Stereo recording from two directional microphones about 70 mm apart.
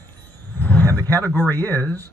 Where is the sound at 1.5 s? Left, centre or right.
Left.